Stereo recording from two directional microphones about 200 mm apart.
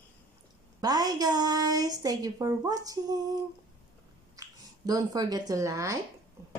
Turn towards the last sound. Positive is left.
turn(degrees=-15)  # may be behind; listen again after turning